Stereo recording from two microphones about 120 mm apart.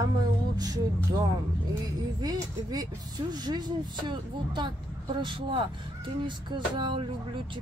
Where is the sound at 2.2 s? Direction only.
30° right (ahead or behind).